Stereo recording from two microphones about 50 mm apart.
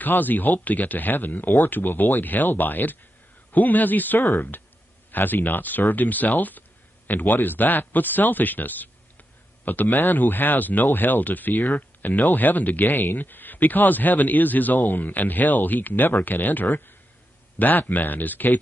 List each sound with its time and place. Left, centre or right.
0.0 s speech: left